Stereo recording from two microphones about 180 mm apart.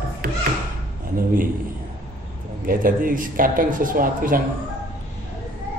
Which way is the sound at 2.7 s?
50° right (ahead or behind).